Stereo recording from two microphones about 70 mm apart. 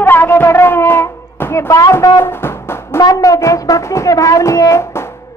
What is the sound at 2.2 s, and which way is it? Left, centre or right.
Music, left.